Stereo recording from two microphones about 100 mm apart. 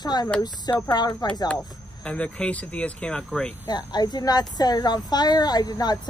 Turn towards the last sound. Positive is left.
turn(degrees=40)  # may be behind; listen again after turning